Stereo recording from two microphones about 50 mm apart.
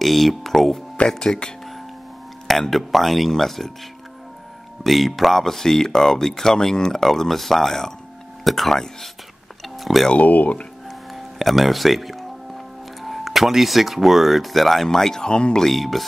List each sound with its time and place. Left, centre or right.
0.0 s speech: centre
0.9 s speech: centre
2.4 s speech: centre
4.8 s speech: centre
9.8 s music: centre
10.1 s speech: left
10.9 s music: centre
13.0 s speech: centre
15.6 s speech: centre